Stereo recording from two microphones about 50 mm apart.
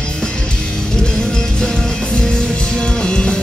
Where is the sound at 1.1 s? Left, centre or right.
Centre.